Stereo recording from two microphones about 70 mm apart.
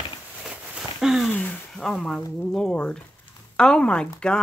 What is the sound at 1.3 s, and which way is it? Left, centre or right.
Speech, left.